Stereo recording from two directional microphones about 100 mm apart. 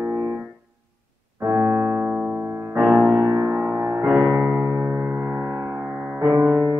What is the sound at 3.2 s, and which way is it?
Music, 40° right (ahead or behind).